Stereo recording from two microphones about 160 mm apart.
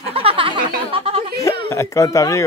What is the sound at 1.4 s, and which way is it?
Speech, 20° left (ahead or behind).